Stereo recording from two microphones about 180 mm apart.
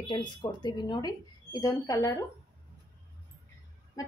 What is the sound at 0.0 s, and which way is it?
Speech, 25° left (ahead or behind).